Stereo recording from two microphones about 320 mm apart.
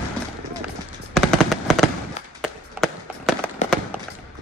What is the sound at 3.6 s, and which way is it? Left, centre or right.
Fireworks, left.